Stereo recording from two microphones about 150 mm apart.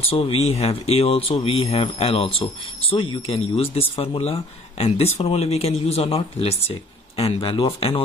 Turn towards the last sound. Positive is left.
turn(degrees=35)  # may be behind; listen again after turning